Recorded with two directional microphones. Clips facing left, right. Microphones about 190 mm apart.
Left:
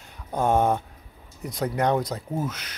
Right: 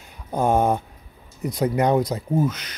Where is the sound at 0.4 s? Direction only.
Centre (ahead or behind).